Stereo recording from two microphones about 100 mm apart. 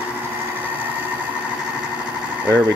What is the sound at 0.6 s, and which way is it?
Sewing machine, 20° right (ahead or behind).